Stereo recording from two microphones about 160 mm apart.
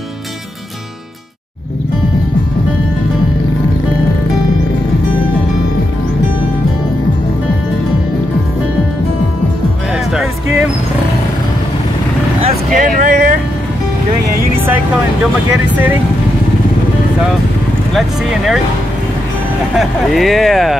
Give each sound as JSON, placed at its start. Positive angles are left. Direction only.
{"t": 12.7, "sound": "vehicle", "side_deg": -55}
{"t": 15.7, "sound": "vehicle", "side_deg": -10}
{"t": 17.9, "sound": "a sound", "side_deg": 0}
{"t": 19.8, "sound": "speech", "side_deg": 0}